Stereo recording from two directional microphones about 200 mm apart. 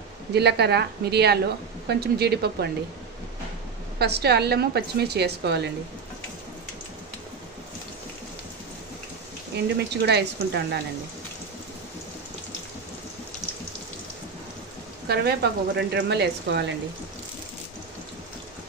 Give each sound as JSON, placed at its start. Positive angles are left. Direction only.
{"t": 0.3, "sound": "a woman's voice", "side_deg": -55}
{"t": 4.0, "sound": "a woman's voice", "side_deg": -55}
{"t": 10.0, "sound": "speech", "side_deg": -55}
{"t": 15.0, "sound": "speech", "side_deg": -55}